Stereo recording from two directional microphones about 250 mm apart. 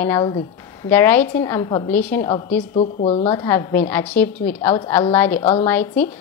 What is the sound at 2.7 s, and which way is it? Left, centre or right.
A woman's voice, left.